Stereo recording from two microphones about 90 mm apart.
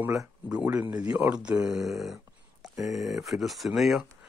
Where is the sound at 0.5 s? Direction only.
15° right (ahead or behind).